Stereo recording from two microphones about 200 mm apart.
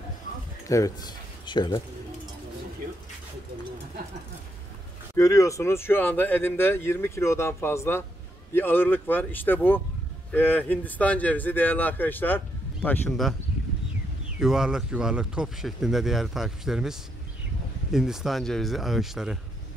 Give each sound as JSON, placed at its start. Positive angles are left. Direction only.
{"t": 0.7, "sound": "speech", "side_deg": 15}
{"t": 5.1, "sound": "speech", "side_deg": 15}
{"t": 14.4, "sound": "speech", "side_deg": -5}
{"t": 17.9, "sound": "speech", "side_deg": 0}